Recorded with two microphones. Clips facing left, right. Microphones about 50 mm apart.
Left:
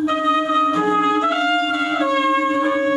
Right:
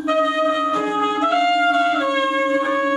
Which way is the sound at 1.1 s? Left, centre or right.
Centre.